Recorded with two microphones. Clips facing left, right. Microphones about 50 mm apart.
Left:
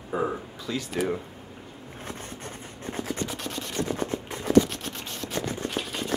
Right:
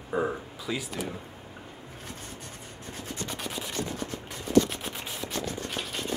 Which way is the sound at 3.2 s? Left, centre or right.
Centre.